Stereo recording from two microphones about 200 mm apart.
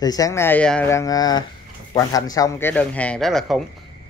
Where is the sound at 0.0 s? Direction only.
20° left (ahead or behind); by 3.6 s centre (ahead or behind).